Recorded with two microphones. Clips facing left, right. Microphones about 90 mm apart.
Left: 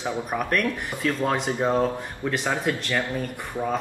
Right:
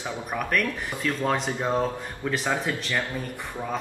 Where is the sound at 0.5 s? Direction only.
Centre (ahead or behind).